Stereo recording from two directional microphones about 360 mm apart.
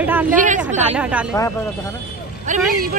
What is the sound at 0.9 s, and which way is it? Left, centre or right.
Speech, centre.